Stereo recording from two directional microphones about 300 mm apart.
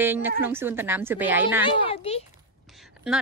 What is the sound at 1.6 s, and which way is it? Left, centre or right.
Speech, centre.